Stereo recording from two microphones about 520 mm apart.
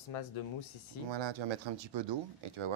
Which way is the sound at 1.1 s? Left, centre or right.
Right.